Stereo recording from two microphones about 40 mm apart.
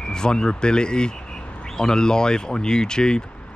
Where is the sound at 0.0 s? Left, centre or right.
Centre.